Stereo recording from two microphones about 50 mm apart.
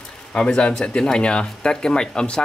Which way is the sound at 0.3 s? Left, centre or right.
Centre.